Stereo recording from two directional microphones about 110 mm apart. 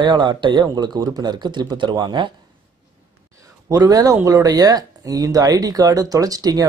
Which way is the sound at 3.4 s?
30° right (ahead or behind).